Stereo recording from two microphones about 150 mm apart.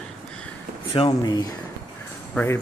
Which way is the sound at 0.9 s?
25° left (ahead or behind).